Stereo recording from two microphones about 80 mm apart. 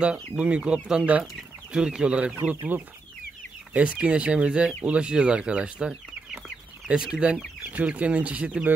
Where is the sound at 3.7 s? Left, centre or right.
Centre.